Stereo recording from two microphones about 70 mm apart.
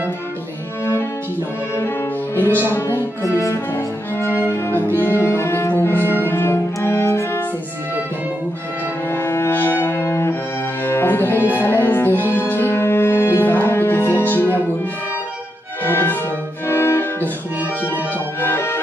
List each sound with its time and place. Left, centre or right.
2.3 s music: left
3.3 s music: left
9.1 s cello: left
10.9 s music: left
15.8 s music: left
16.6 s cello: left
18.4 s music: left